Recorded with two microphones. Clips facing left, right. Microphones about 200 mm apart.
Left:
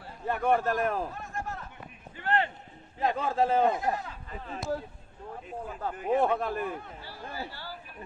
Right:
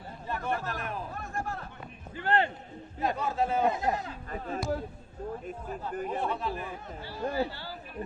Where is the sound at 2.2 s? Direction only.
30° right (ahead or behind).